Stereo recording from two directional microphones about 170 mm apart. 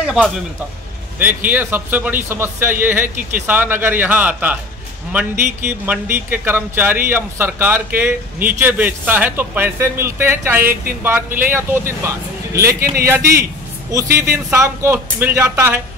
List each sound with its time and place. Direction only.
0.0 s a man's voice: 5° right (ahead or behind)
14.1 s a man's voice: 15° right (ahead or behind)